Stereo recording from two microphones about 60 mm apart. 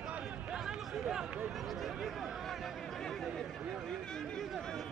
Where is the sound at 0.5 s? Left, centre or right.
Centre.